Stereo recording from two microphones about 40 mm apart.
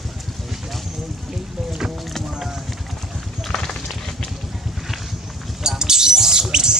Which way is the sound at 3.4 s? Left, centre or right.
Centre.